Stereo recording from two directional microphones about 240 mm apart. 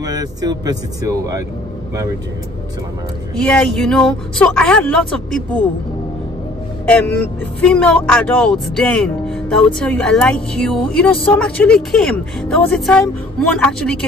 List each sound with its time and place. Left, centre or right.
0.0 s speech: centre
3.3 s speech: centre
7.6 s speech: centre